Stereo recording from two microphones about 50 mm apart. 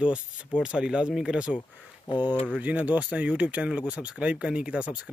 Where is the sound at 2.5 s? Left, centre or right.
Right.